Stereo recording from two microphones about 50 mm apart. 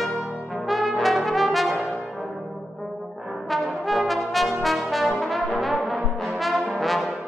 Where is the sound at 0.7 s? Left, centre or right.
Centre.